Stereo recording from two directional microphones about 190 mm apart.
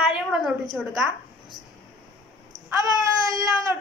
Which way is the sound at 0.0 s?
5° right (ahead or behind).